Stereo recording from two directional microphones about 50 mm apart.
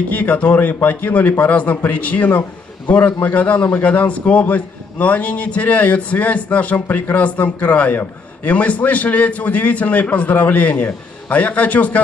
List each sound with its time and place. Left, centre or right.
0.1 s a man's voice: left